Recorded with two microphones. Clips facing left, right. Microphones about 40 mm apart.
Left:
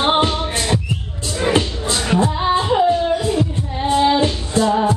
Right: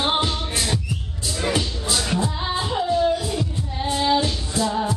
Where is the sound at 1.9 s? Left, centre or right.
Centre.